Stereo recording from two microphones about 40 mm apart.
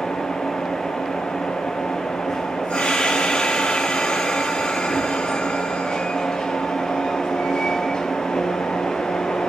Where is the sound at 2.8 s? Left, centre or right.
Centre.